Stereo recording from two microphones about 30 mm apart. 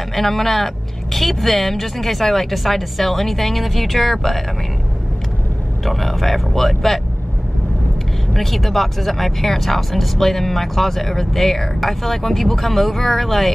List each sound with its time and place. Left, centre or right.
0.1 s speech: centre
5.9 s speech: centre
8.3 s speech: centre